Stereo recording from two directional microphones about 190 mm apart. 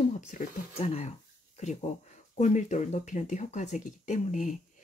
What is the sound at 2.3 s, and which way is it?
Speech, 40° left (ahead or behind).